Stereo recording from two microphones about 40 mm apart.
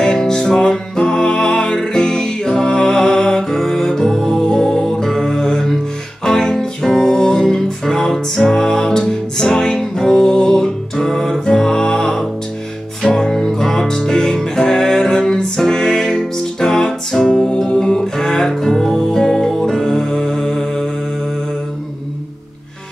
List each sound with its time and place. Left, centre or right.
0.0 s music: centre